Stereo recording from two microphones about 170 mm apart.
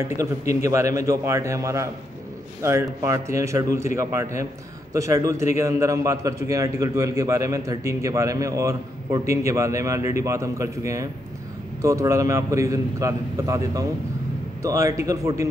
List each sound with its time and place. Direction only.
0.0 s a man's voice: 15° right (ahead or behind)